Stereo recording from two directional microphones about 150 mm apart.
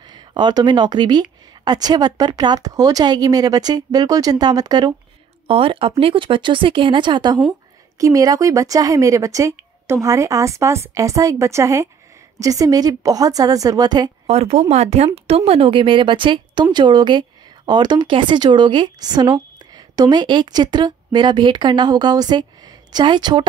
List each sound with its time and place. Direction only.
0.0 s speech: 30° right (ahead or behind)
14.2 s speech: 45° right (ahead or behind)